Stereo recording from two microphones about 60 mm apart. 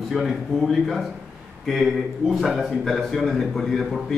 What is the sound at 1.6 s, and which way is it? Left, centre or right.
A man's voice, centre.